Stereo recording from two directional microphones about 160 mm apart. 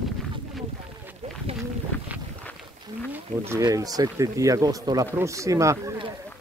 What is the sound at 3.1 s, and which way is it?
Speech, 15° right (ahead or behind).